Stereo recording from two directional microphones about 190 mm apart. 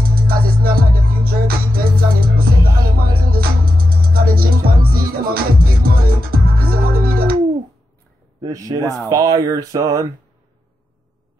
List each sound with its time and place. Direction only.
0.0 s music: 50° right (ahead or behind)
8.4 s speech: 20° right (ahead or behind)